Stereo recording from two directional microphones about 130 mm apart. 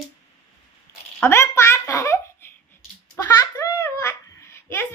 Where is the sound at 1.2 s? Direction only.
20° left (ahead or behind).